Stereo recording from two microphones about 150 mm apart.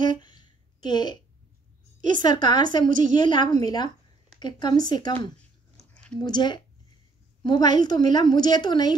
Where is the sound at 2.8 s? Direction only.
60° right (ahead or behind).